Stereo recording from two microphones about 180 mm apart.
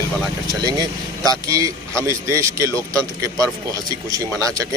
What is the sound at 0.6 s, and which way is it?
Speech, 20° right (ahead or behind).